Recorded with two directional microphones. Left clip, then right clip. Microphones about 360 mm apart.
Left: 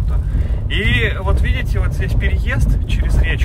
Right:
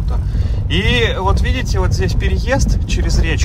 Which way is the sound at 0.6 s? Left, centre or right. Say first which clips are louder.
Right 2 dB; centre.